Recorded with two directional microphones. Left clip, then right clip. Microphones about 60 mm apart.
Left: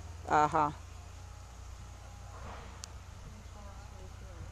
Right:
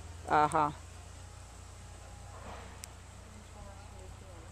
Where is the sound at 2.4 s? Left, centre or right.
Right.